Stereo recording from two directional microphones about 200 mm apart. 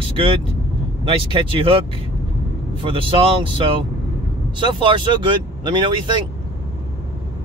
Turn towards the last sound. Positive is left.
turn(degrees=-25)  # may be behind; listen again after turning